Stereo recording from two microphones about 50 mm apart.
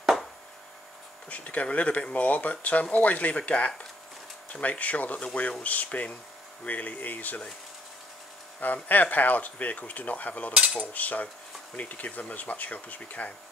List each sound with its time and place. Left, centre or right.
0.0 s a sound: centre
1.3 s speech: left
5.6 s cutlery: left
8.8 s cutlery: left